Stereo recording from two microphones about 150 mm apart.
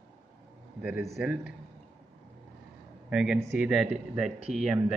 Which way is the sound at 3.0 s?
5° right (ahead or behind).